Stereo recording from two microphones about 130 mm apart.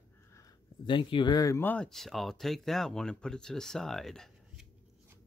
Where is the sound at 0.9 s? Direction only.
40° left (ahead or behind).